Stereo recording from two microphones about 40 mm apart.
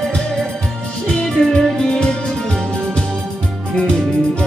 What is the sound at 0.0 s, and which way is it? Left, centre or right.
Music, centre.